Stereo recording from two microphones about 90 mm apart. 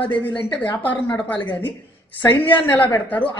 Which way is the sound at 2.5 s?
20° left (ahead or behind).